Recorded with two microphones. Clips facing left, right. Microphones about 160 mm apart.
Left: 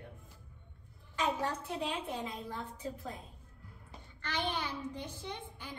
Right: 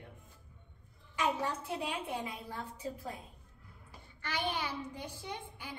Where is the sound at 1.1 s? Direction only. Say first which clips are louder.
Even; 10° right (ahead or behind).